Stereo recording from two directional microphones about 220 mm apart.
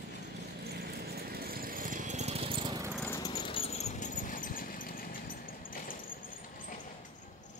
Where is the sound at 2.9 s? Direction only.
10° left (ahead or behind).